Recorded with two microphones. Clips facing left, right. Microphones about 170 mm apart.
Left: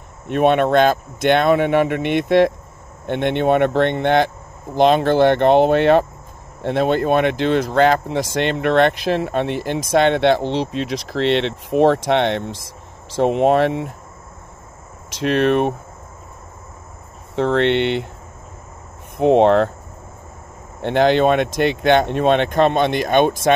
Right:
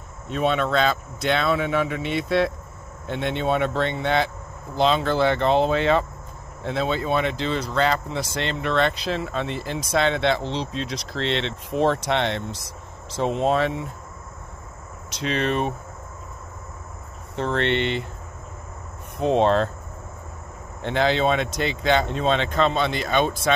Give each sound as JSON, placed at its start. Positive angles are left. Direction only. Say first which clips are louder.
{"t": 0.3, "sound": "speech", "louder": "left 7 dB", "side_deg": 60}
{"t": 15.2, "sound": "speech", "louder": "left 7 dB", "side_deg": 60}
{"t": 17.4, "sound": "speech", "louder": "left 6 dB", "side_deg": 60}
{"t": 19.1, "sound": "speech", "louder": "left 6 dB", "side_deg": 60}
{"t": 20.8, "sound": "speech", "louder": "left 6 dB", "side_deg": 60}